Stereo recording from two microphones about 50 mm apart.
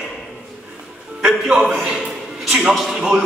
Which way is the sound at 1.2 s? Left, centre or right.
Centre.